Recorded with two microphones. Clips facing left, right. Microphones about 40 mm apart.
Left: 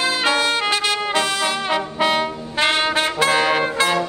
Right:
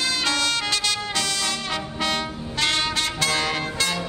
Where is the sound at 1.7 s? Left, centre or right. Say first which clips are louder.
Left 8 dB; centre.